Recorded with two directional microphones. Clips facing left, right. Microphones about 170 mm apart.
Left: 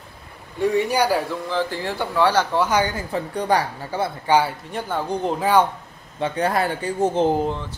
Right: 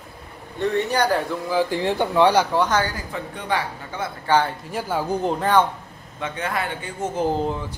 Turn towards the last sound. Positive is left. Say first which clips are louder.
# even
turn(degrees=-5)  # may be behind; listen again after turning